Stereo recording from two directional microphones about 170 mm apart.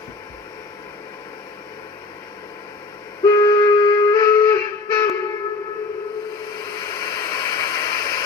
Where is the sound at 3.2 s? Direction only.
25° left (ahead or behind).